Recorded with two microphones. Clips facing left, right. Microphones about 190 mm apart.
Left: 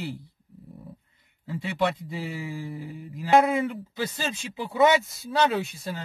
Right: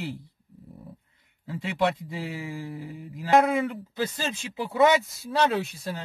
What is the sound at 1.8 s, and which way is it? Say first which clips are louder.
Speech: right 2 dB; 15° right (ahead or behind).